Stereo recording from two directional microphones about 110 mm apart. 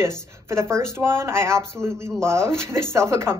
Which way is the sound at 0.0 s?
25° right (ahead or behind).